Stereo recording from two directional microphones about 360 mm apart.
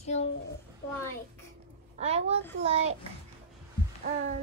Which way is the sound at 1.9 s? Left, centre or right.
Centre.